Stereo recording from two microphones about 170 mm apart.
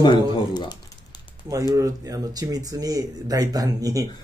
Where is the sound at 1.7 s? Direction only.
20° right (ahead or behind).